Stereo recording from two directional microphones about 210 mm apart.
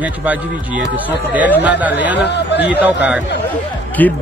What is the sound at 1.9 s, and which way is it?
Speech, 55° left (ahead or behind).